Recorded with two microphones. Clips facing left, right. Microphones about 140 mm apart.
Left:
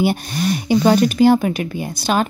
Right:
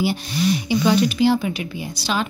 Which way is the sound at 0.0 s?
50° left (ahead or behind).